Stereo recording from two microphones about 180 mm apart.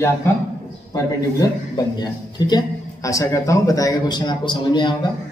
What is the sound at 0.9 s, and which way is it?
A man's voice, 20° left (ahead or behind).